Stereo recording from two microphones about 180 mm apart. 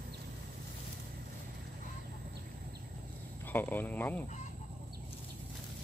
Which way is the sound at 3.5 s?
10° left (ahead or behind).